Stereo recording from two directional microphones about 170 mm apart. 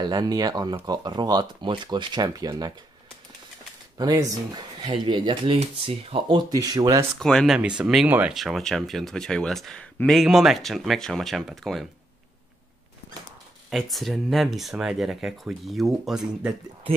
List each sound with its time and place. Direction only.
0.0 s speech: 25° right (ahead or behind)
4.0 s speech: 25° right (ahead or behind)
7.2 s speech: 5° left (ahead or behind)
13.7 s speech: centre (ahead or behind)